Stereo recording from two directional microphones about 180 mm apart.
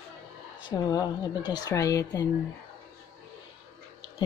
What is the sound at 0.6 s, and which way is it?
Speech, 25° left (ahead or behind).